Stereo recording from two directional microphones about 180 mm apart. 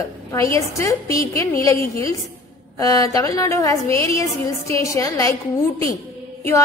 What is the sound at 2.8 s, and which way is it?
A woman's voice, 20° left (ahead or behind).